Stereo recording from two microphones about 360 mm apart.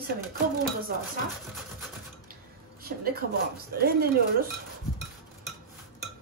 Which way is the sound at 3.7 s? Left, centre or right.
Right.